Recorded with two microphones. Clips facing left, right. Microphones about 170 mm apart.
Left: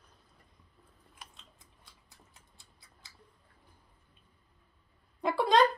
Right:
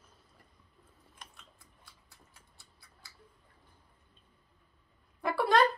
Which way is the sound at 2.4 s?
20° left (ahead or behind).